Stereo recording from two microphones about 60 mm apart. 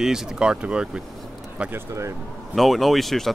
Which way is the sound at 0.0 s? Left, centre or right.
Centre.